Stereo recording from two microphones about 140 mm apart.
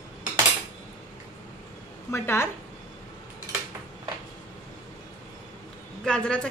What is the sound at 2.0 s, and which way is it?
Speech, 20° left (ahead or behind).